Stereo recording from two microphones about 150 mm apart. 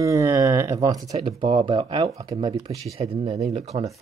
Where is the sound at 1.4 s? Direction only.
35° right (ahead or behind).